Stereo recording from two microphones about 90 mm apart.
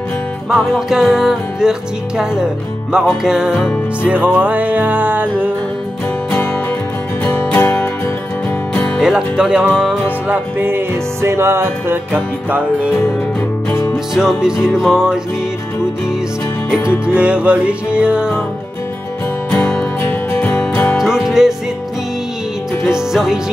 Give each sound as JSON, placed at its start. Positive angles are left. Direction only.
{"t": 0.7, "sound": "music", "side_deg": -5}
{"t": 7.2, "sound": "music", "side_deg": 25}
{"t": 8.9, "sound": "music", "side_deg": -5}
{"t": 10.2, "sound": "music", "side_deg": -20}
{"t": 14.1, "sound": "music", "side_deg": -5}
{"t": 17.0, "sound": "music", "side_deg": -10}
{"t": 19.5, "sound": "music", "side_deg": 10}
{"t": 20.0, "sound": "music", "side_deg": 25}
{"t": 20.9, "sound": "music", "side_deg": -5}
{"t": 22.8, "sound": "speech", "side_deg": -5}